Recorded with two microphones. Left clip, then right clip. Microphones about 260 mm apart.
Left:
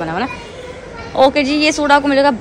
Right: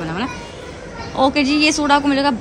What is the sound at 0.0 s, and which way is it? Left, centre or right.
Speech, centre.